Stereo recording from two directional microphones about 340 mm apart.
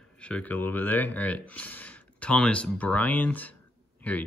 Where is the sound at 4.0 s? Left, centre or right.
Centre.